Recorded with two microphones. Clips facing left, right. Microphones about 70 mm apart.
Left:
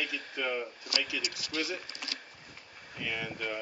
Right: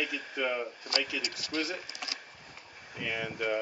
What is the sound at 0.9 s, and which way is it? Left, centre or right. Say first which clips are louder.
Speech: right 2 dB; right.